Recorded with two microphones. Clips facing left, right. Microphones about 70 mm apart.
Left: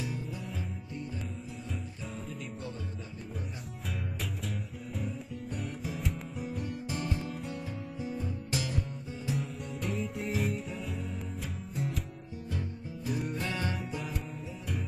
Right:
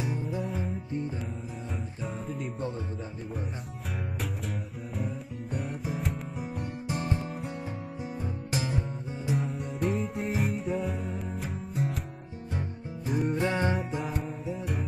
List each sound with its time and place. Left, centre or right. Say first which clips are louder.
0.0 s music: right 6 dB; right
4.9 s music: right 3 dB; centre
6.9 s music: right 5 dB; right
9.3 s music: right 5 dB; centre
12.5 s music: right 4 dB; right
14.0 s music: right 6 dB; centre